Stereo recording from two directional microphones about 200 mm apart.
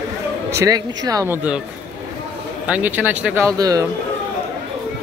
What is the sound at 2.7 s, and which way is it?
Speech, 10° right (ahead or behind).